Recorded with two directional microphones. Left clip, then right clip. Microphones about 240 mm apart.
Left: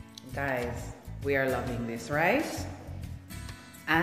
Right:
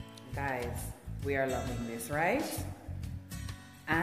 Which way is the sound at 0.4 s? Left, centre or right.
Centre.